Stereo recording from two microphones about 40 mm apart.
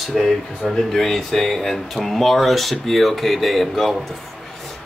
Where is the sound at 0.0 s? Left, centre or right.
Centre.